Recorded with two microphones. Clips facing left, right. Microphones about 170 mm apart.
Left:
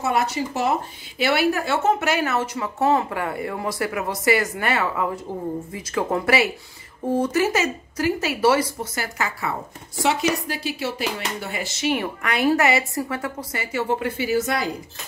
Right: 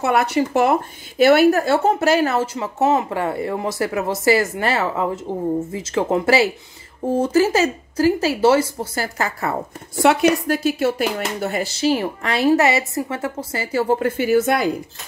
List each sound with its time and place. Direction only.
0.0 s a woman's voice: 60° right (ahead or behind); by 9.0 s 25° right (ahead or behind)
9.0 s speech: 45° right (ahead or behind)
10.0 s a woman's voice: 55° right (ahead or behind)